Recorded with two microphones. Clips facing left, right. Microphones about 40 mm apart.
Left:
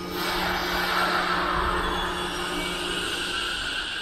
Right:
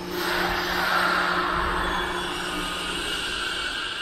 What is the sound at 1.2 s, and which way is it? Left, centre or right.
Vehicle, centre.